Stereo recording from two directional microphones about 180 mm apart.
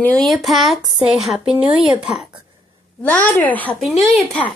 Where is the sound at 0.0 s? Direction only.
5° left (ahead or behind).